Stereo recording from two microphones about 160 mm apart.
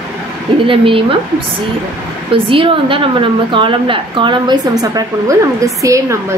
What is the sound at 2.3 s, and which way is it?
A woman's voice, 35° right (ahead or behind).